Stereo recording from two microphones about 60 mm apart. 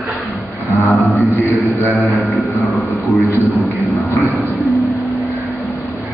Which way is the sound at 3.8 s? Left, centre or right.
Centre.